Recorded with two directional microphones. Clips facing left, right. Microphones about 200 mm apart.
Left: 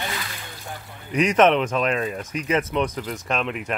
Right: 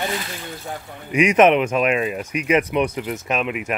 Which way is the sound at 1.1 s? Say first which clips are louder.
Right 3 dB; 10° right (ahead or behind).